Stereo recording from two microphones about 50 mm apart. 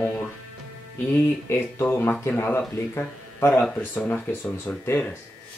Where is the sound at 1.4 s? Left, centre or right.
Left.